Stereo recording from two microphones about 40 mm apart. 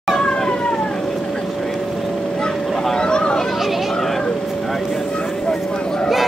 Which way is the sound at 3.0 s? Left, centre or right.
Left.